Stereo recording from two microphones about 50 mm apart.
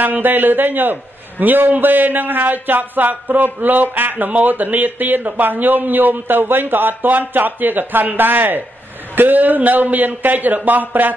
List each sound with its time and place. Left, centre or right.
0.0 s speech: right